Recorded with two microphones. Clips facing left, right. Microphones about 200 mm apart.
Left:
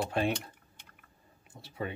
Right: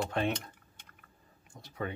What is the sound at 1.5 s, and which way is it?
Speech, 5° left (ahead or behind).